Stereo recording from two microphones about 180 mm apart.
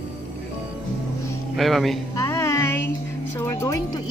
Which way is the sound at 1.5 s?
Centre (ahead or behind).